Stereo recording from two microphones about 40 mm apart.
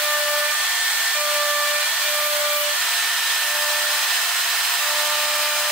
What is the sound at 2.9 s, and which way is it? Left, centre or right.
Hair dryer, centre.